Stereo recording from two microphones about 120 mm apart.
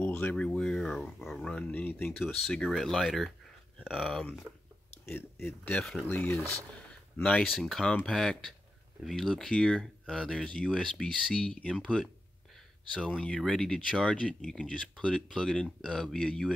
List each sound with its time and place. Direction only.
0.0 s speech: 15° left (ahead or behind)
5.0 s speech: 15° left (ahead or behind)
6.5 s a sound: 15° left (ahead or behind)
7.5 s speech: centre (ahead or behind)